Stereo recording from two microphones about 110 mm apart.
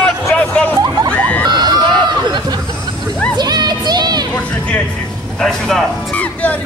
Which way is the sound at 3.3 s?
40° right (ahead or behind).